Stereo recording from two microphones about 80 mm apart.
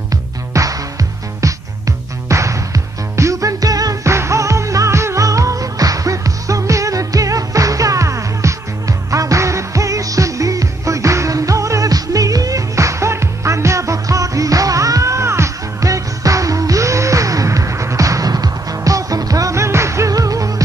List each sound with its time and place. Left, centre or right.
0.5 s music: right